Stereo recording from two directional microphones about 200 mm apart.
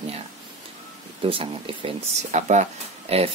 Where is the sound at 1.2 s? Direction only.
25° right (ahead or behind).